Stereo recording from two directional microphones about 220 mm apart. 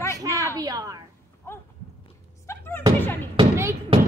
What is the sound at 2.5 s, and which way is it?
Thunk, 10° left (ahead or behind).